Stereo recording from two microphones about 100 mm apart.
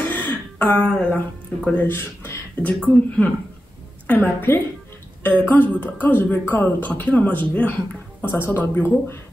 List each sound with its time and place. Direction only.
0.1 s speech: 15° left (ahead or behind)